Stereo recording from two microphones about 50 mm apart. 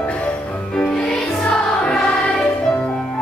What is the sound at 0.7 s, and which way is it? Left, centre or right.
Music, centre.